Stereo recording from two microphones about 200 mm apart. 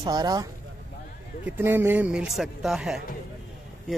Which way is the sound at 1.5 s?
10° right (ahead or behind).